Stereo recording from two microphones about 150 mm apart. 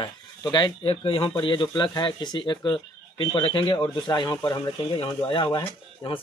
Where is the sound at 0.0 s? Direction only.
30° left (ahead or behind).